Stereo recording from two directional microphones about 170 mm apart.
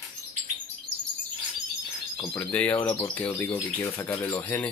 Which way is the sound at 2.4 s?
10° left (ahead or behind).